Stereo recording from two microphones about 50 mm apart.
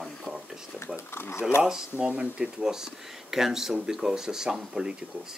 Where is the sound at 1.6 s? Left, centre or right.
Centre.